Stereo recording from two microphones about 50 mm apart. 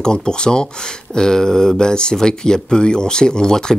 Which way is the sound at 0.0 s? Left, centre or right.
Centre.